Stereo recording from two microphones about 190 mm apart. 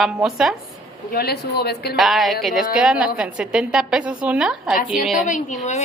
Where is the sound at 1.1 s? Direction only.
55° left (ahead or behind).